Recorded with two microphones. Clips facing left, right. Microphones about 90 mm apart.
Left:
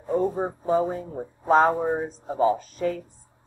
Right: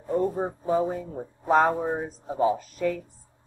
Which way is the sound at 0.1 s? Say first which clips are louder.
Left 1 dB; 5° left (ahead or behind).